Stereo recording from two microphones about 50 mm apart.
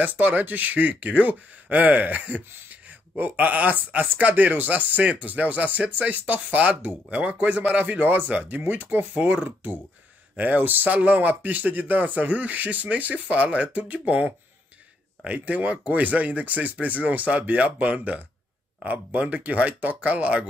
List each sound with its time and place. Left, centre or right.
0.0 s speech: right
9.1 s speech: right
9.4 s speech: right